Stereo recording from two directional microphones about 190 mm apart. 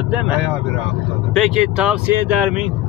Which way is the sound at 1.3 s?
Centre (ahead or behind).